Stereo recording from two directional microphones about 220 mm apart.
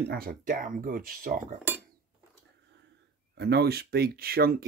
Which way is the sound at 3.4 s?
50° right (ahead or behind).